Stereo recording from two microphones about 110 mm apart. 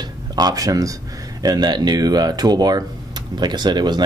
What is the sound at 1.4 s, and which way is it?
Speech, 35° right (ahead or behind).